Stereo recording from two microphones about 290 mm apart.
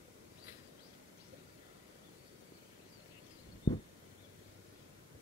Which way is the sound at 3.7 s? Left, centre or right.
Centre.